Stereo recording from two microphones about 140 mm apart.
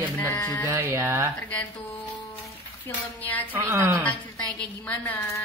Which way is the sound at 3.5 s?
15° right (ahead or behind).